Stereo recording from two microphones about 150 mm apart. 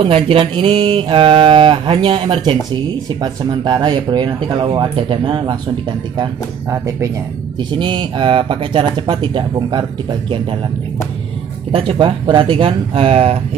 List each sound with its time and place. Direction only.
0.0 s mantra: 35° right (ahead or behind)
7.7 s mantra: 30° right (ahead or behind)
11.7 s mantra: 35° right (ahead or behind)